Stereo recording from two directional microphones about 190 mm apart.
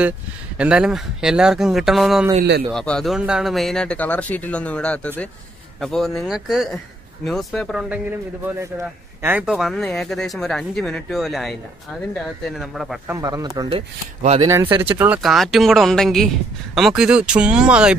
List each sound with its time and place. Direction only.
0.6 s speech: 5° right (ahead or behind)
8.5 s speech: 15° right (ahead or behind)
13.1 s speech: 15° right (ahead or behind)
13.7 s speech: 30° right (ahead or behind)
14.4 s speech: 15° right (ahead or behind)